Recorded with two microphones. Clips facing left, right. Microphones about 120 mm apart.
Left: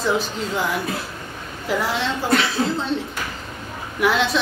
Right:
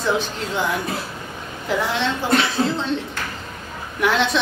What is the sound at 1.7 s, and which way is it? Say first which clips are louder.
Speech: right 1 dB; 5° left (ahead or behind).